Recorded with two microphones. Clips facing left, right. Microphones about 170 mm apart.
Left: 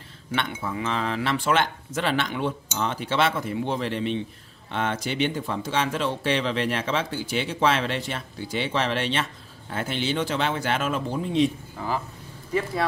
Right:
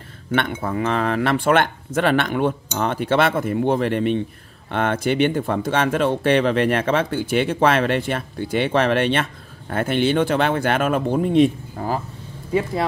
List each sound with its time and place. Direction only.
0.3 s speech: 55° right (ahead or behind)